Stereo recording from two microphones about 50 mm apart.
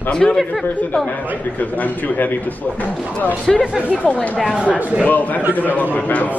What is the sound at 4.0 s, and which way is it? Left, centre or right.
A man's voice, left.